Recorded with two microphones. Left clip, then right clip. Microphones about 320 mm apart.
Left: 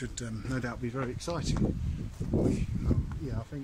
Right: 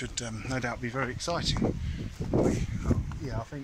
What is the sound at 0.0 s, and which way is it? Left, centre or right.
Speech, centre.